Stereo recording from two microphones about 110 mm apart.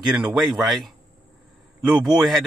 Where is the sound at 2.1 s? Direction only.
Centre (ahead or behind).